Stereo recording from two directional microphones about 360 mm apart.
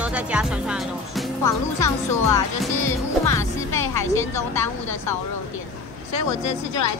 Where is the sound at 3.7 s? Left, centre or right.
Left.